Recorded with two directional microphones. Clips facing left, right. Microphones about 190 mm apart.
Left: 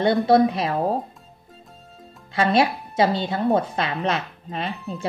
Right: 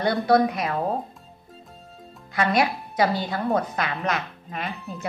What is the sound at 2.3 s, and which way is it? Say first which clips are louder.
A woman's voice: left 3 dB; 30° left (ahead or behind).